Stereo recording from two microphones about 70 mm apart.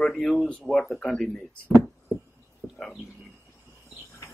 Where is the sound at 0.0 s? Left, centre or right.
Centre.